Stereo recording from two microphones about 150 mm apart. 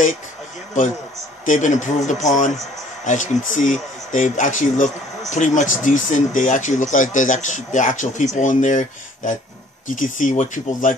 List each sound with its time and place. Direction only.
1.4 s speech: 55° left (ahead or behind)